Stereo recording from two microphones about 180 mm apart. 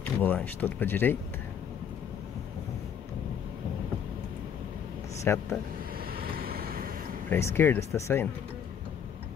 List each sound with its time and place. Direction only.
0.2 s speech: 10° left (ahead or behind)
5.3 s speech: 10° left (ahead or behind)
6.1 s vehicle: 55° right (ahead or behind)
7.2 s speech: 15° left (ahead or behind)